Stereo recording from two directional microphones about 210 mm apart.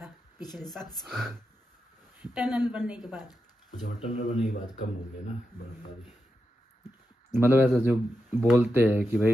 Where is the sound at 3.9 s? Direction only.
35° left (ahead or behind).